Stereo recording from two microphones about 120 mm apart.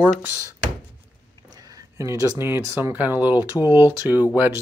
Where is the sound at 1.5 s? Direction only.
30° right (ahead or behind); by 4.6 s 15° right (ahead or behind).